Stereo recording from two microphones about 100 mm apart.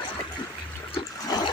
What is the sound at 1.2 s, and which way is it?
Water, 40° left (ahead or behind).